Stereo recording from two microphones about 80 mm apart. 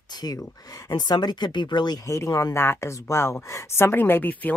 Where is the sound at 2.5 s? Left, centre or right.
Left.